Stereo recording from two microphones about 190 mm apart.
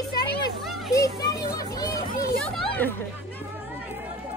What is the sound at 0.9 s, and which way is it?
Children playing, 20° left (ahead or behind).